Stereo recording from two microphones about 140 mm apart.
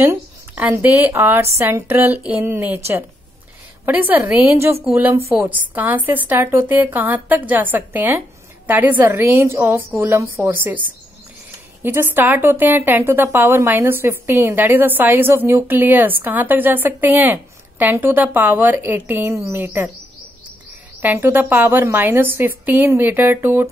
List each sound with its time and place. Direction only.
0.0 s a woman's voice: 15° right (ahead or behind)
11.8 s a woman's voice: 15° right (ahead or behind)
21.0 s a woman's voice: 15° right (ahead or behind)